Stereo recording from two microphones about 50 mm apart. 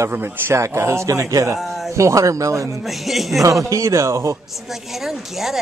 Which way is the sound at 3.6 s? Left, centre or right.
Right.